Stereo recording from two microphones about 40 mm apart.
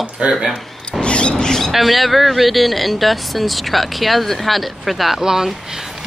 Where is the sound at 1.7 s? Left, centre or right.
Centre.